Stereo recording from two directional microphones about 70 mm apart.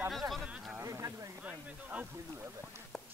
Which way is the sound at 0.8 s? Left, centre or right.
Right.